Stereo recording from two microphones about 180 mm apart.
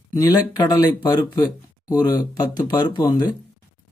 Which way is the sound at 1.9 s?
20° left (ahead or behind).